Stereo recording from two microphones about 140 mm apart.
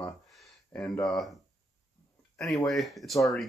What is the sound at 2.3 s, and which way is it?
Speech, centre (ahead or behind).